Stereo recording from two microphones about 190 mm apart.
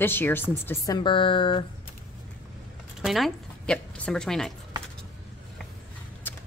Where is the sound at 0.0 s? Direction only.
10° left (ahead or behind).